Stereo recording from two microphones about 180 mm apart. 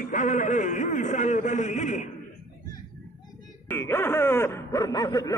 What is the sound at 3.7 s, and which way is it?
Speech, 15° left (ahead or behind).